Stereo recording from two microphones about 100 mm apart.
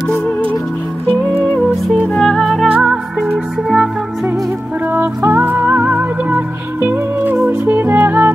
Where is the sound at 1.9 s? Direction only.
5° left (ahead or behind).